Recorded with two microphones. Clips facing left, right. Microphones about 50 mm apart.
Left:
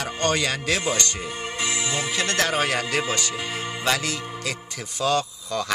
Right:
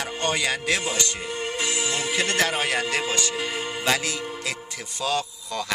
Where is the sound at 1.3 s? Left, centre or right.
Centre.